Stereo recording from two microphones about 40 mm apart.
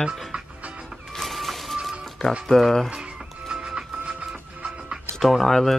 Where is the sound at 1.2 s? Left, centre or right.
Centre.